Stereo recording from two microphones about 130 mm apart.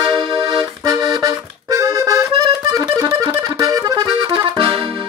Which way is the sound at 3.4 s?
25° right (ahead or behind).